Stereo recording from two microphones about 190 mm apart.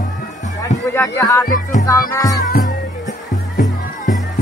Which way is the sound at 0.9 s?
15° left (ahead or behind).